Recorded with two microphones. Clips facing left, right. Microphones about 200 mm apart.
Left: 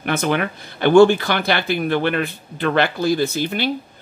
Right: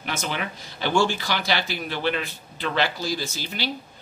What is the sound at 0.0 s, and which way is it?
Speech, 60° left (ahead or behind).